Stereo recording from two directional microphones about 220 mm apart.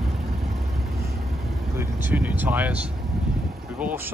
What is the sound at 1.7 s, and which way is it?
Speech, 10° right (ahead or behind).